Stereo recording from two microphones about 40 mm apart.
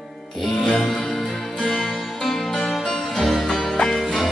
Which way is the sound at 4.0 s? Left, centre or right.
Centre.